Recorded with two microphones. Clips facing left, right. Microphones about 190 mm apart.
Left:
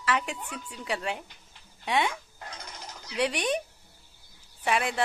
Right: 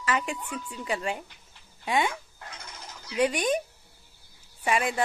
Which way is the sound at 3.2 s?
5° right (ahead or behind).